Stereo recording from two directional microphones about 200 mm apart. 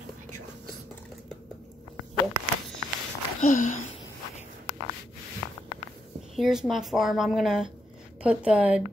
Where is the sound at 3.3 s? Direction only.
40° left (ahead or behind).